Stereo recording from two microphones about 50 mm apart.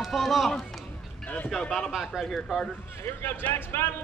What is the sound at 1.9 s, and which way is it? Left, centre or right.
Speech, centre.